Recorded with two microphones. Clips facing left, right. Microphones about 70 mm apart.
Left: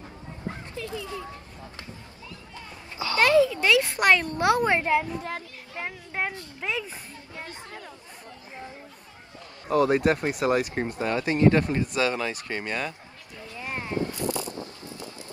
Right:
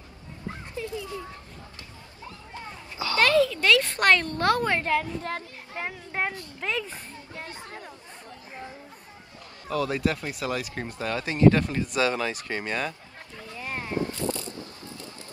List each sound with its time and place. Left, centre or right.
3.0 s speech: left
5.9 s a woman's voice: centre
6.6 s speech: centre
7.4 s speech: right
9.7 s speech: left
12.5 s speech: right
13.6 s a sound: left